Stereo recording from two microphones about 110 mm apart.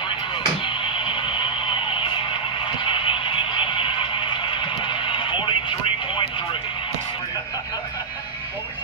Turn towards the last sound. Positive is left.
turn(degrees=50)  # may be behind; listen again after turning